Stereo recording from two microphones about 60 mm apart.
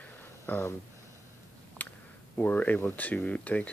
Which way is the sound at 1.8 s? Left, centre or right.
Left.